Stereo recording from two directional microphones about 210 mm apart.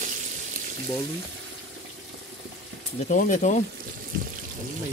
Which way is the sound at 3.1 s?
35° left (ahead or behind).